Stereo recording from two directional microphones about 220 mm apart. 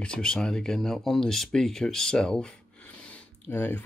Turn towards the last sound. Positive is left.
turn(degrees=10)  # may be behind; listen again after turning